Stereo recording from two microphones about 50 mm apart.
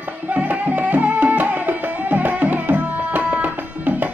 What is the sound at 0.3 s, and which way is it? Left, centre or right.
Music, right.